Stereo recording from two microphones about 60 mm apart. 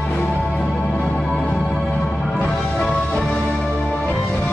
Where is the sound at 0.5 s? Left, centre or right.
Centre.